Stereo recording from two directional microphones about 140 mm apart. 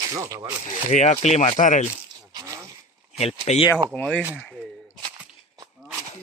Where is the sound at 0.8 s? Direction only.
55° left (ahead or behind).